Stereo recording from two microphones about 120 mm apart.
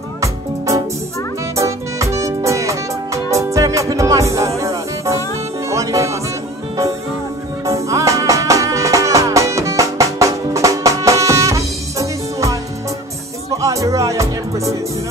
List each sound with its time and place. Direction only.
0.2 s music: 25° right (ahead or behind)
7.6 s music: 25° right (ahead or behind)
13.6 s music: 25° right (ahead or behind)